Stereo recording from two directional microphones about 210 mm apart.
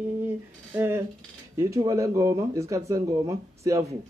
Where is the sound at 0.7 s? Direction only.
10° right (ahead or behind).